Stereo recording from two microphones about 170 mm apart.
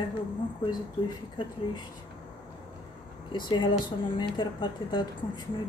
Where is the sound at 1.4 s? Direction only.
25° left (ahead or behind).